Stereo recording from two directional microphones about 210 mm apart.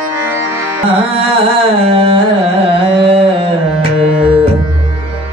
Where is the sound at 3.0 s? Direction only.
25° right (ahead or behind).